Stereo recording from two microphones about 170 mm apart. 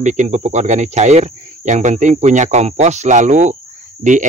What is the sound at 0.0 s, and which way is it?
Speech, 45° right (ahead or behind).